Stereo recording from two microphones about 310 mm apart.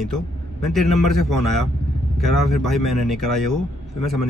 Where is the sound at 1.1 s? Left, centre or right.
Left.